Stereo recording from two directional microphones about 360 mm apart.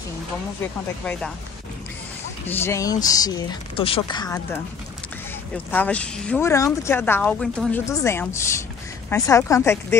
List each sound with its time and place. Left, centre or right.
2.4 s speech: centre